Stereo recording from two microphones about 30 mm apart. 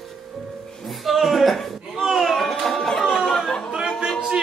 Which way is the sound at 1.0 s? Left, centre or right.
Centre.